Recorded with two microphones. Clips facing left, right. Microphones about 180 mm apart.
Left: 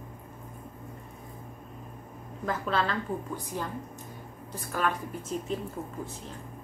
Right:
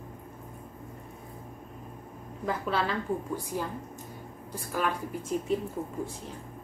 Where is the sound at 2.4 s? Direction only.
10° right (ahead or behind).